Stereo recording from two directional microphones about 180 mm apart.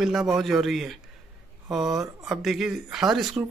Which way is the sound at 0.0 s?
Centre (ahead or behind).